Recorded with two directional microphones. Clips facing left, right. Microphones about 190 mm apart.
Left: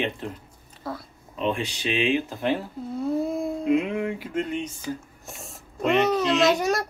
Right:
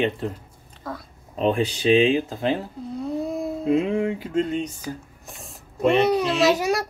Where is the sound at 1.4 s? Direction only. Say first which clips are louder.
Right 5 dB; 35° right (ahead or behind).